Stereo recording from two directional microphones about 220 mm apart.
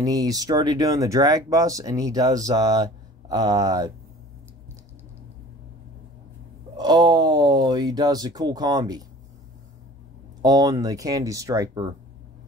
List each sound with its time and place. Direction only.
0.0 s speech: 15° right (ahead or behind)
6.8 s speech: 20° right (ahead or behind)
10.4 s speech: 15° right (ahead or behind)